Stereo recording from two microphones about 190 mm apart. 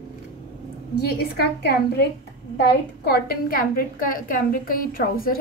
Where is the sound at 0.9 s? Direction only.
60° left (ahead or behind).